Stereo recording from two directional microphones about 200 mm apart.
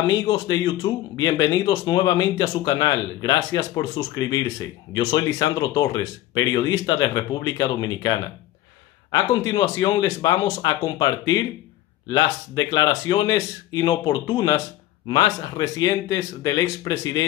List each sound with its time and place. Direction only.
0.0 s speech: 20° left (ahead or behind)